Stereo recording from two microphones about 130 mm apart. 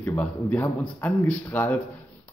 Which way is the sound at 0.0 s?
15° left (ahead or behind).